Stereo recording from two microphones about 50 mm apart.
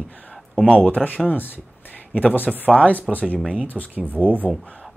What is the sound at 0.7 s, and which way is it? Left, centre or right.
Speech, left.